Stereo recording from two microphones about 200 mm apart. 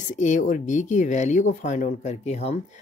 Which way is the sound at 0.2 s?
40° left (ahead or behind).